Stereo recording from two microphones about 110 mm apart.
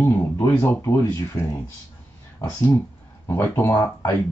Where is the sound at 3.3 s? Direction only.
20° left (ahead or behind).